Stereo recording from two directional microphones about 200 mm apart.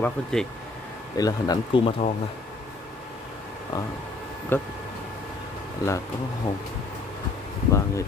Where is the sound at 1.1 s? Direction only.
20° left (ahead or behind).